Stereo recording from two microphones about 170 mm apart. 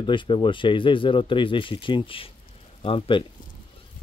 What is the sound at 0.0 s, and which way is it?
Speech, 30° left (ahead or behind).